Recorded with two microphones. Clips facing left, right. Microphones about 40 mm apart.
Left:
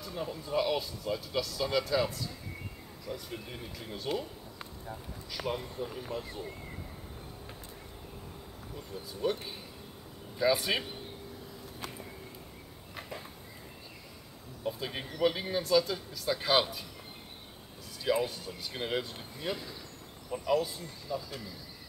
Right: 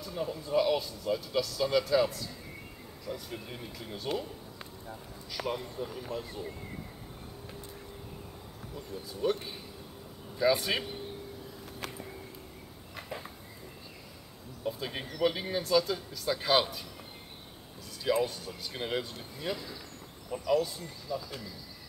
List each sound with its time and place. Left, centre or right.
0.0 s speech: centre
9.2 s speech: centre
11.8 s a sound: right
14.6 s speech: centre
18.2 s speech: centre